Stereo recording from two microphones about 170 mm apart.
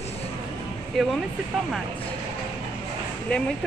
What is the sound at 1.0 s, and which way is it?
Speech, centre (ahead or behind).